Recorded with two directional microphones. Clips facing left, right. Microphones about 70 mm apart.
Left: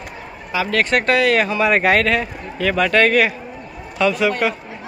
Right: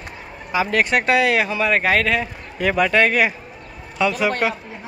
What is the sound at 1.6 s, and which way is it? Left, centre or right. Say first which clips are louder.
Speech: left 3 dB; centre.